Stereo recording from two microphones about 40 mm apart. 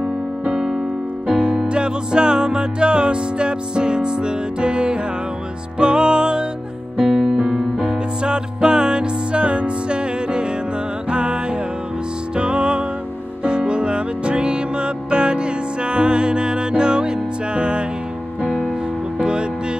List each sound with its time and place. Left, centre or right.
1.7 s music: right
7.1 s piano: right
8.2 s music: right
12.4 s music: right
19.1 s music: right